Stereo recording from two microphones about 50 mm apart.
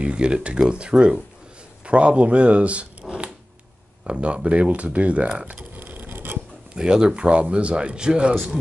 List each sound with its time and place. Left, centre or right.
0.0 s speech: right
5.4 s a sound: right
6.3 s speech: centre